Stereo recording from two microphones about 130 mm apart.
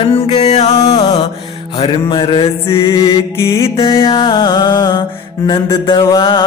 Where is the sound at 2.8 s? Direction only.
25° left (ahead or behind).